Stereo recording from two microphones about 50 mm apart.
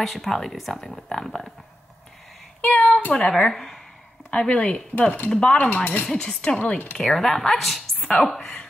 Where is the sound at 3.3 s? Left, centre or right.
Centre.